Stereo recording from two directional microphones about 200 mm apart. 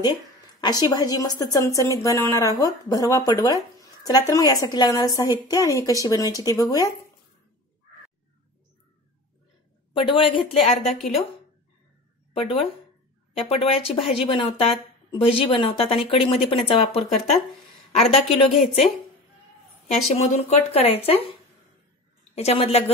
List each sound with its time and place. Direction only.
0.6 s a woman's voice: 20° left (ahead or behind)
9.9 s speech: 25° left (ahead or behind)
12.4 s speech: 25° left (ahead or behind)
20.2 s speech: 30° left (ahead or behind)
22.3 s speech: 30° left (ahead or behind)